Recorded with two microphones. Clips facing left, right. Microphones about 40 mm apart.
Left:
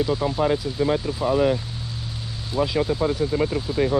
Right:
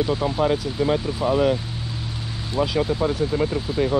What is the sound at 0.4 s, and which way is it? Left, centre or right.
Speech, right.